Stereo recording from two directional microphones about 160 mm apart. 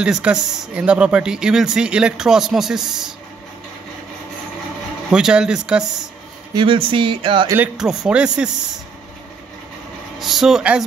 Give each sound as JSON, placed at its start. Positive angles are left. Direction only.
{"t": 0.0, "sound": "speech", "side_deg": -5}
{"t": 5.1, "sound": "speech", "side_deg": -5}
{"t": 6.5, "sound": "music", "side_deg": -30}
{"t": 7.5, "sound": "speech", "side_deg": -5}
{"t": 10.1, "sound": "speech", "side_deg": 0}